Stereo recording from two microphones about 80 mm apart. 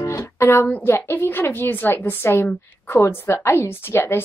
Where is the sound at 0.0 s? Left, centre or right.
Left.